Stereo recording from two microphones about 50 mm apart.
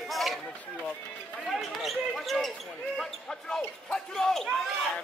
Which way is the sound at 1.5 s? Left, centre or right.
Centre.